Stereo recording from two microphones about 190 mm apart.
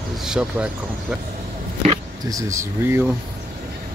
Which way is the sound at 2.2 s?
15° right (ahead or behind).